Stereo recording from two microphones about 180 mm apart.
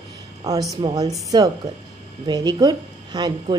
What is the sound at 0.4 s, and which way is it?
A woman's voice, 20° right (ahead or behind).